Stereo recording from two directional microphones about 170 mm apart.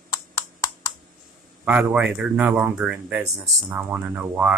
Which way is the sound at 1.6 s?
10° right (ahead or behind).